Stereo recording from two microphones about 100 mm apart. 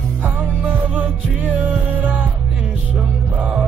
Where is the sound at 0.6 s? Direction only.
15° right (ahead or behind).